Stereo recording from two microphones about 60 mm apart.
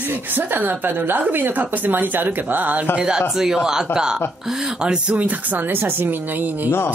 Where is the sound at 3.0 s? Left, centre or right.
Centre.